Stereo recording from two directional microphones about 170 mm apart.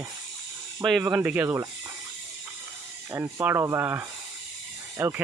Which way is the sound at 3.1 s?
15° right (ahead or behind).